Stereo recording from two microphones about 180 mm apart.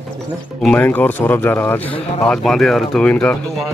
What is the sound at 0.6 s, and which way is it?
Speech, 10° left (ahead or behind).